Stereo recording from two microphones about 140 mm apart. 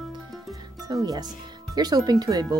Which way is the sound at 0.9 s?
25° right (ahead or behind).